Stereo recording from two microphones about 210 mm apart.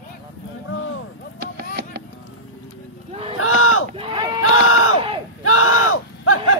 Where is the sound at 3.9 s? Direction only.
20° right (ahead or behind).